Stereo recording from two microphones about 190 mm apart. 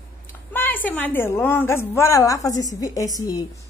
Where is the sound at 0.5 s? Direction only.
10° left (ahead or behind).